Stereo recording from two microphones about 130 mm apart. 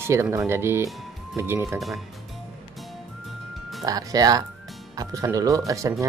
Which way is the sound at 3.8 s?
30° right (ahead or behind).